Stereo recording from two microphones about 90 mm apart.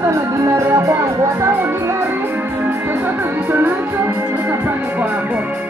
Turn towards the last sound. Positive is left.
turn(degrees=-15)  # may be behind; listen again after turning